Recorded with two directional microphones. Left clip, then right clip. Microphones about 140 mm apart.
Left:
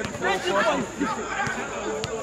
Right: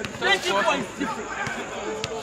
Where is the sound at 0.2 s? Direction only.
20° right (ahead or behind).